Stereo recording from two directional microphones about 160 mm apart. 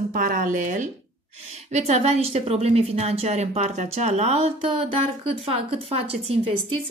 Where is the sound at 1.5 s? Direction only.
45° right (ahead or behind).